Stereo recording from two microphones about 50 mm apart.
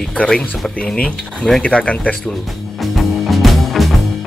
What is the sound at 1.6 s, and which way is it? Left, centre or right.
Speech, left.